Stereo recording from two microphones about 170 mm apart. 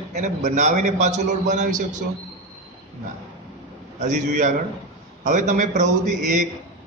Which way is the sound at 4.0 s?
45° right (ahead or behind).